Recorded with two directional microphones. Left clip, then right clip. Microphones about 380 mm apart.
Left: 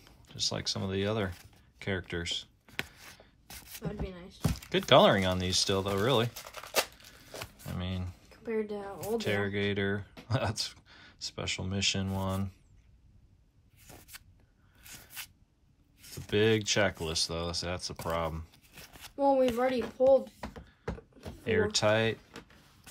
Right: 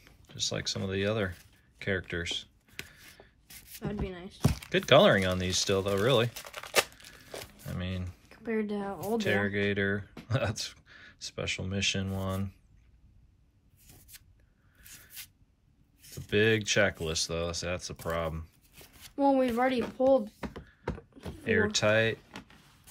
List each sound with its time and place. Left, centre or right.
0.0 s speech: centre
1.8 s writing: centre
3.8 s speech: centre
4.6 s speech: centre
6.5 s tearing: centre
7.6 s shuffling cards: centre
8.5 s speech: centre
9.2 s speech: centre
16.1 s speech: centre
19.1 s speech: centre
21.5 s speech: centre